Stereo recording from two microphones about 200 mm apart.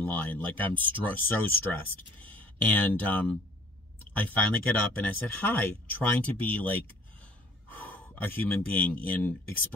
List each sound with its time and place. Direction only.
0.0 s speech: 10° left (ahead or behind)
7.7 s gasp: 10° left (ahead or behind)
8.6 s speech: 10° left (ahead or behind)